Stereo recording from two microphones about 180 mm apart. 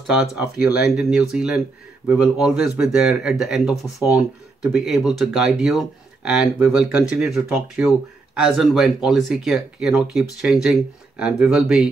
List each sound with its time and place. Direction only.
0.0 s speech: 5° right (ahead or behind)